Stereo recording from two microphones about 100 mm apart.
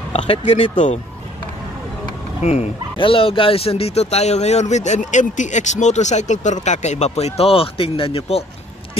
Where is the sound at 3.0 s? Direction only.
60° left (ahead or behind); by 4.6 s 90° left.